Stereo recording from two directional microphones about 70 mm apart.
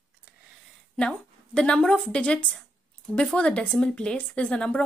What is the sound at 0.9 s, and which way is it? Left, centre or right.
A woman's voice, centre.